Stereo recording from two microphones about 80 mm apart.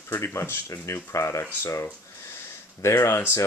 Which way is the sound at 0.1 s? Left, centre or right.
Left.